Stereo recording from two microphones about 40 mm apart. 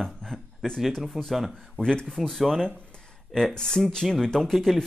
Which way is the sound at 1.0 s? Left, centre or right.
Centre.